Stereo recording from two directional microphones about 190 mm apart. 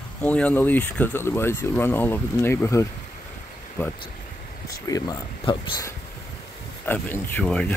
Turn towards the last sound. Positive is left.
turn(degrees=5)  # may be behind; listen again after turning